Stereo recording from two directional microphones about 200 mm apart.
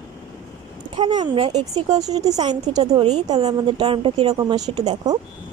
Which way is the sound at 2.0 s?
20° right (ahead or behind).